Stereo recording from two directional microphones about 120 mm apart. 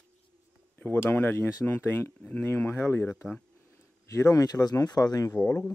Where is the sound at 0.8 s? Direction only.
20° left (ahead or behind).